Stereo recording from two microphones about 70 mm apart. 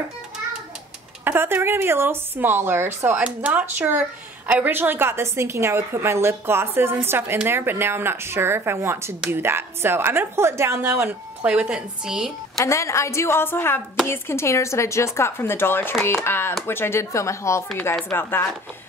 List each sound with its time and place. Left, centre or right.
1.2 s a woman's voice: right
11.4 s a woman's voice: centre
12.6 s a woman's voice: left
18.1 s speech: left